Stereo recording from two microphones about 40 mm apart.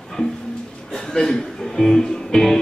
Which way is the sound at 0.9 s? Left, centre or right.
Centre.